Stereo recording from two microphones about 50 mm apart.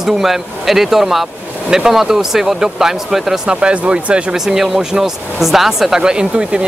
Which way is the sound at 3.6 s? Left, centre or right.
Right.